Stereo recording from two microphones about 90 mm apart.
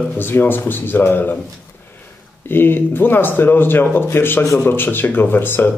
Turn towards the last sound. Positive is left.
turn(degrees=25)  # may be behind; listen again after turning